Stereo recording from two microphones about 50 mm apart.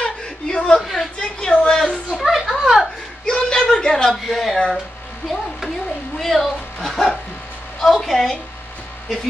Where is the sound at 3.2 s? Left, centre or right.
Centre.